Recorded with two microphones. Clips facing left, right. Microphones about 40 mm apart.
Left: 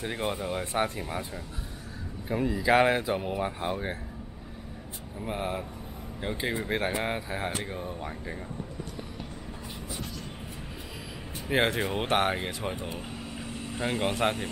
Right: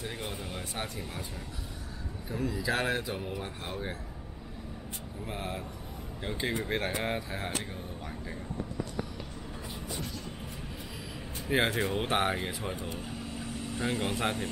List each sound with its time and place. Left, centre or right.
0.0 s speech: left
2.2 s speech: left
5.2 s speech: centre
11.4 s speech: centre